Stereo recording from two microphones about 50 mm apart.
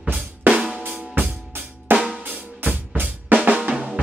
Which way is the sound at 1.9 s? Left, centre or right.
Right.